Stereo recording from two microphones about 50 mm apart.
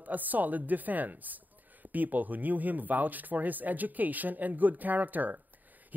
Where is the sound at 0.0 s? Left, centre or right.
Right.